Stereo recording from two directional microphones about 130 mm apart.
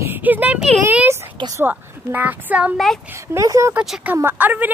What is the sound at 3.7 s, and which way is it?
Speech, 5° right (ahead or behind).